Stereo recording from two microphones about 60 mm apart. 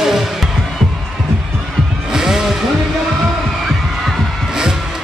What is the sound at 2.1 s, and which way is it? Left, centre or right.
Vehicle, centre.